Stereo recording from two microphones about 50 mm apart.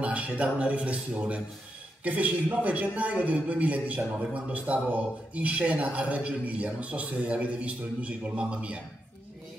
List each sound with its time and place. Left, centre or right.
0.0 s a man's voice: right